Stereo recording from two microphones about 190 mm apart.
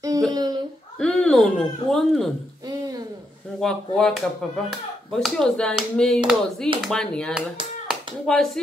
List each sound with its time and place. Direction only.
0.3 s speech: 20° right (ahead or behind)
0.9 s speech: 5° left (ahead or behind)
3.6 s speech: 5° left (ahead or behind)
7.9 s clapping: centre (ahead or behind)